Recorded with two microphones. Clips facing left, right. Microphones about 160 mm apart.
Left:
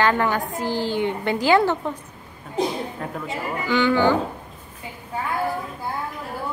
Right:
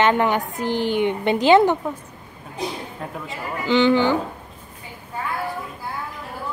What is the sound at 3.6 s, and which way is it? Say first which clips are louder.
Speech: right 2 dB; 25° right (ahead or behind).